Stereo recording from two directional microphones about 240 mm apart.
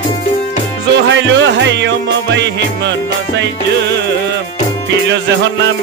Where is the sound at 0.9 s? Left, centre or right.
Right.